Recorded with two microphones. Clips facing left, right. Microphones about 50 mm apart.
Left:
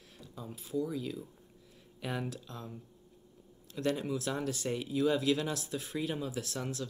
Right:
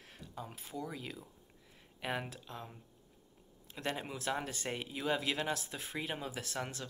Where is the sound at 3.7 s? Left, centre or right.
Right.